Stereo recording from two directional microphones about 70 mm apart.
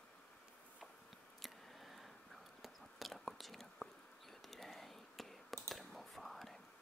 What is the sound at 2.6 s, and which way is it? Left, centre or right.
Whispering, centre.